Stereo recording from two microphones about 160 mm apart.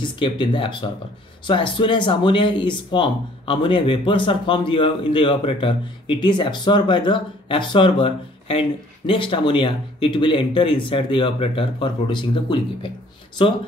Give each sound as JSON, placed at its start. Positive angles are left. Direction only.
{"t": 0.0, "sound": "speech", "side_deg": 30}